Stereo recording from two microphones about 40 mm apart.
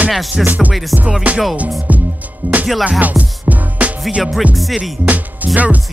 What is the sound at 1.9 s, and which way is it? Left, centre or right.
Music, right.